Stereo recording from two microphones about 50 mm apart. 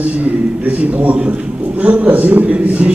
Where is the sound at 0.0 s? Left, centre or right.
Right.